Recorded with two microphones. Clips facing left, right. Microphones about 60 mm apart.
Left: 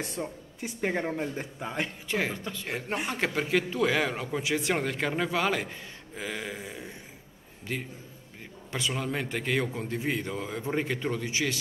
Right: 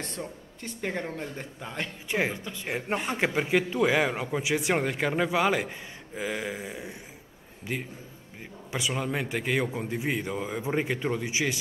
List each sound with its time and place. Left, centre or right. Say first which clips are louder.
0.2 s speech: left 2 dB; centre
2.0 s speech: right 5 dB; centre